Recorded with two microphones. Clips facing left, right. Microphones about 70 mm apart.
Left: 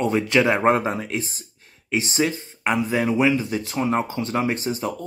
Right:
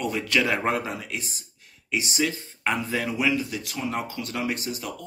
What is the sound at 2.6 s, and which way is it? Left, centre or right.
Speech, centre.